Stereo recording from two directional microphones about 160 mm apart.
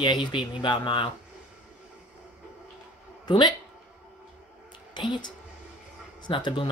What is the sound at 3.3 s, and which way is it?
Speech, 25° left (ahead or behind).